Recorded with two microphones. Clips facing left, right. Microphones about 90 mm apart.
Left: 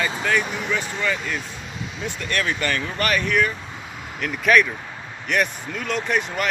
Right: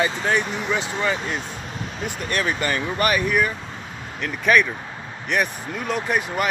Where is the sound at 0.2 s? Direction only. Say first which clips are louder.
Even; 20° right (ahead or behind).